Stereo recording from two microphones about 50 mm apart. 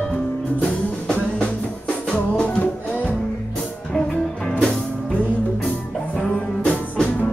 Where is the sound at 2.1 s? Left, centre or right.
Left.